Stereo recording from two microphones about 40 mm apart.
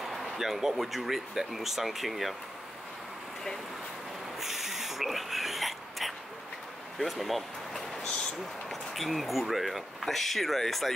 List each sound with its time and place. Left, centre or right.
0.0 s speech: centre
4.4 s a sound: centre
7.0 s speech: centre
8.0 s vehicle: left
8.6 s speech: centre